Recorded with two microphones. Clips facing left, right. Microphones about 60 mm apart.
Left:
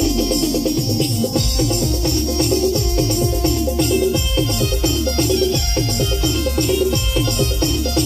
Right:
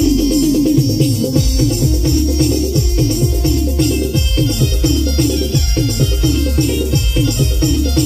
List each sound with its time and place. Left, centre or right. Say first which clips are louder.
0.0 s music: right 6 dB; centre
3.4 s music: right 3 dB; centre
5.8 s music: right 3 dB; centre
6.7 s music: even; centre